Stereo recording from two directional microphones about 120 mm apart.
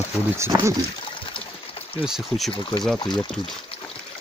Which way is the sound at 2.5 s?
45° left (ahead or behind).